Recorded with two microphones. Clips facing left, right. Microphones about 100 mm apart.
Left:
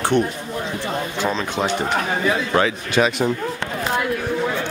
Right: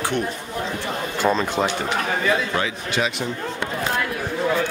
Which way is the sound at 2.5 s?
50° left (ahead or behind).